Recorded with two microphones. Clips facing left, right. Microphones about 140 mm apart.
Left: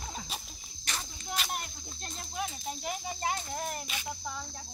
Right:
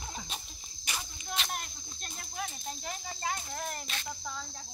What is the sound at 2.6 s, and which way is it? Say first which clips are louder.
Speech: left 4 dB; 15° left (ahead or behind).